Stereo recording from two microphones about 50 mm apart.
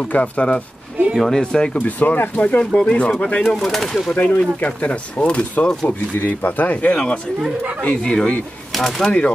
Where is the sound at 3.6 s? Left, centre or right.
Centre.